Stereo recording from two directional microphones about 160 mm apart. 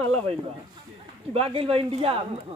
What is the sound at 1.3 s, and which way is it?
Speech, 35° right (ahead or behind).